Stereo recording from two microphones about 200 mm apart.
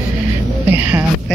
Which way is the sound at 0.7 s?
10° right (ahead or behind).